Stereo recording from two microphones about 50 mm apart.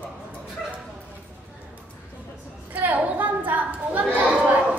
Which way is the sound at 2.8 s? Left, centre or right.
Right.